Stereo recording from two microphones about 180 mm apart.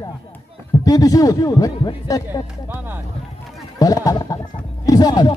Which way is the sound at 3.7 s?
20° left (ahead or behind).